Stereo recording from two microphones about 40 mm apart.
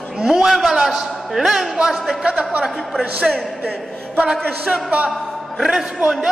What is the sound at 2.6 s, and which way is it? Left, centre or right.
Speech, centre.